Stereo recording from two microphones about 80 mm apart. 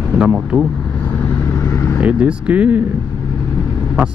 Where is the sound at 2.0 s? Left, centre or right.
Centre.